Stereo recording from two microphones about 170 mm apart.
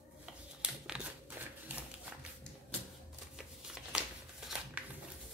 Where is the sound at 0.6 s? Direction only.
5° right (ahead or behind).